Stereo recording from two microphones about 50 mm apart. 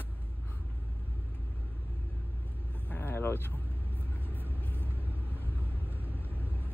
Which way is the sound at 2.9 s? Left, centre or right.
Left.